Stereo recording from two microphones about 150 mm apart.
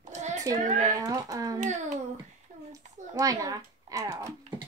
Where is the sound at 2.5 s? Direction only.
50° right (ahead or behind).